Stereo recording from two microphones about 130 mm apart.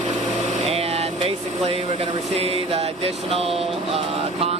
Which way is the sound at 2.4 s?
50° right (ahead or behind).